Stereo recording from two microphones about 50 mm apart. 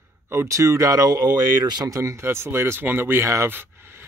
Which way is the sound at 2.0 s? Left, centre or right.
Right.